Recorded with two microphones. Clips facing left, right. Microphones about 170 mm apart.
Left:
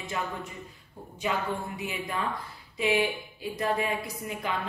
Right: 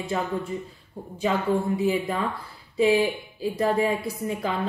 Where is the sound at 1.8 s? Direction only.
35° right (ahead or behind).